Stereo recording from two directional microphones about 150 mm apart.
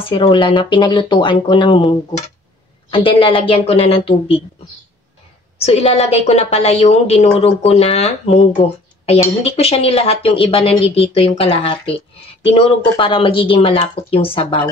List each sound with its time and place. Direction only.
0.1 s speech: 35° left (ahead or behind)
5.6 s a woman's voice: 40° left (ahead or behind)